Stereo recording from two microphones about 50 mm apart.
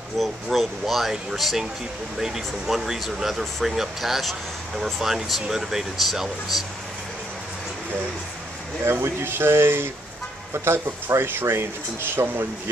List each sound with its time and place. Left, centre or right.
0.2 s speech: centre
8.8 s speech: right